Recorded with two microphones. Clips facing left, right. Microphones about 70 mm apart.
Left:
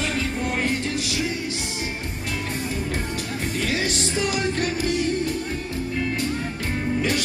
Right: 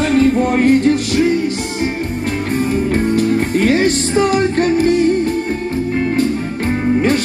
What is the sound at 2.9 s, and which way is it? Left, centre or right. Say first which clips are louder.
Music: right 14 dB; right.